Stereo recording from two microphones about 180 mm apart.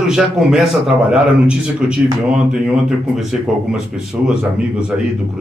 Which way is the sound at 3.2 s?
5° right (ahead or behind).